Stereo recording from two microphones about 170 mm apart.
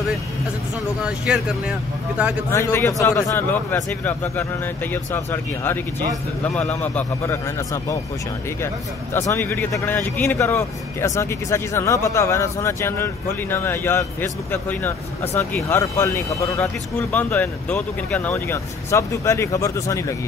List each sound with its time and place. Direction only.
1.0 s speech: 5° right (ahead or behind)
2.5 s speech: 15° left (ahead or behind)
9.1 s speech: 15° left (ahead or behind)